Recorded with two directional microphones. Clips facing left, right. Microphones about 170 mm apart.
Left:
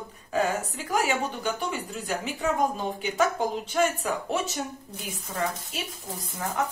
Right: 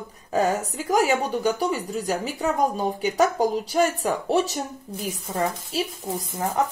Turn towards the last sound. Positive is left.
turn(degrees=-35)  # may be behind; listen again after turning